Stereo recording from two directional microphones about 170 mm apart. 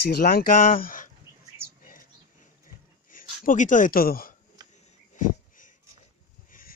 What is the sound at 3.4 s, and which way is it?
Speech, 50° left (ahead or behind).